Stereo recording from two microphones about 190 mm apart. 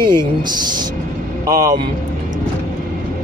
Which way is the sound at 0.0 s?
25° right (ahead or behind).